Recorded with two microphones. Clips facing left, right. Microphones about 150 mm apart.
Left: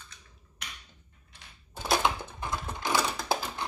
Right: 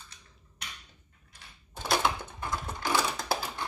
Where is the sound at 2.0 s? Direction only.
20° left (ahead or behind).